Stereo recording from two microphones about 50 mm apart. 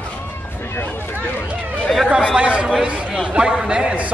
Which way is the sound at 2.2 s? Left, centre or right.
Centre.